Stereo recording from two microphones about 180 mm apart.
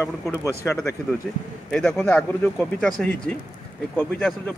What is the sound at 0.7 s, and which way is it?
Speech, 10° left (ahead or behind).